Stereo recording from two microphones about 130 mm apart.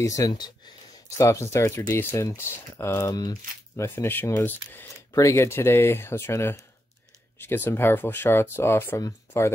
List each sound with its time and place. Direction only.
0.0 s speech: 25° left (ahead or behind)
3.2 s speech: 30° left (ahead or behind)
3.8 s speech: 15° left (ahead or behind)